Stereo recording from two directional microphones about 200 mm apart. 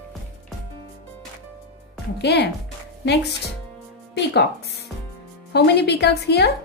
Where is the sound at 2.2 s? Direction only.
55° left (ahead or behind).